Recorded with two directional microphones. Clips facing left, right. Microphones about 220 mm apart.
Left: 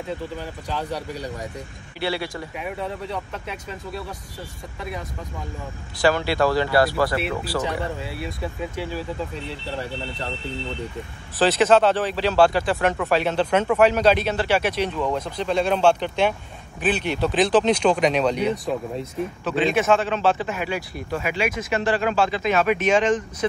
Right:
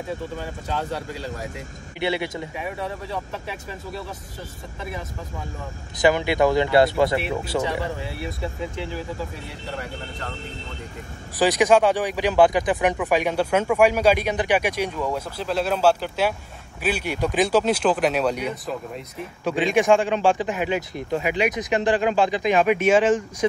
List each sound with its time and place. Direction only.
2.0 s speech: 20° right (ahead or behind)
5.9 s speech: 20° right (ahead or behind)
11.3 s speech: 15° right (ahead or behind)